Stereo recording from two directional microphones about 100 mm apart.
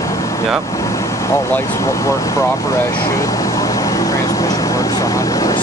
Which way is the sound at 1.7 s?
30° left (ahead or behind).